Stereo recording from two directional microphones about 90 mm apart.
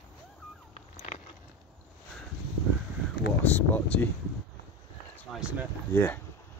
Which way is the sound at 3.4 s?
20° left (ahead or behind).